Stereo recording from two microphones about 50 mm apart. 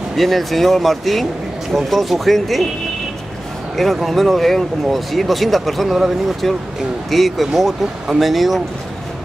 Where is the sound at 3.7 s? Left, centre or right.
Centre.